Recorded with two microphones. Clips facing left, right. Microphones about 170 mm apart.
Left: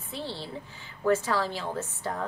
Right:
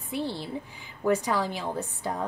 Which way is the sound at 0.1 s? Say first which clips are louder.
Right 5 dB; 15° right (ahead or behind).